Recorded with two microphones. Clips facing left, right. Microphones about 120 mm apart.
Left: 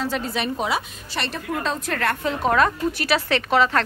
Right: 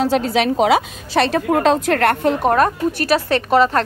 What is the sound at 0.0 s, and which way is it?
A woman's voice, 85° right.